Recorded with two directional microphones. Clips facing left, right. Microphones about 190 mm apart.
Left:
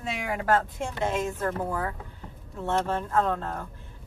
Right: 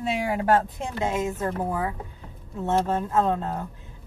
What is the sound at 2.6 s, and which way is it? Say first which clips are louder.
Speech: right 3 dB; 15° right (ahead or behind).